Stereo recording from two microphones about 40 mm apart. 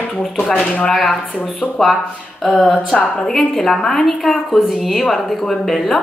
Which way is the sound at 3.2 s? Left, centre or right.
Centre.